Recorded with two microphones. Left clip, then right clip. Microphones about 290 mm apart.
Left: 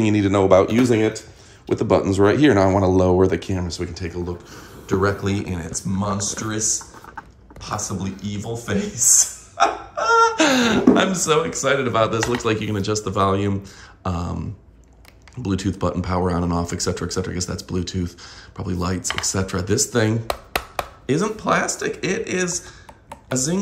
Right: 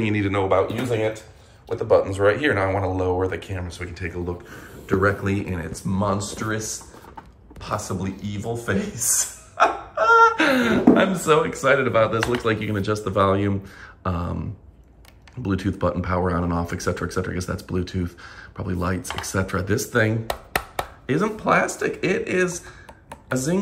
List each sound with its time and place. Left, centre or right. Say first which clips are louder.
0.0 s speech: left 5 dB; centre
0.7 s speech: left 5 dB; left; by 14.4 s centre
15.4 s speech: even; centre
23.0 s computer keyboard: left 1 dB; centre